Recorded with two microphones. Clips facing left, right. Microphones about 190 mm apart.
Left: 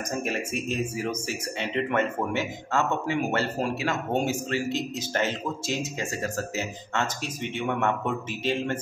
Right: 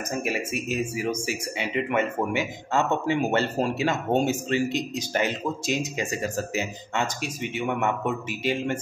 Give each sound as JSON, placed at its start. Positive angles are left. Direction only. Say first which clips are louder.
{"t": 0.2, "sound": "speech", "louder": "right 1 dB", "side_deg": -10}
{"t": 3.1, "sound": "a man's voice", "louder": "right 3 dB", "side_deg": -25}